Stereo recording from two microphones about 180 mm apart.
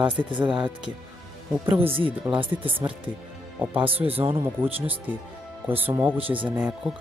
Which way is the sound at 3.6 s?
10° right (ahead or behind).